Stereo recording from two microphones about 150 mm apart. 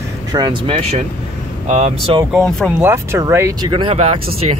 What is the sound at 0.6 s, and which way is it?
Speech, 40° right (ahead or behind).